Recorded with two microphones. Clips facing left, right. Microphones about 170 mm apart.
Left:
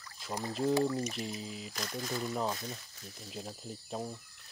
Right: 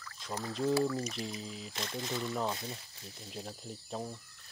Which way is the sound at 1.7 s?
25° right (ahead or behind).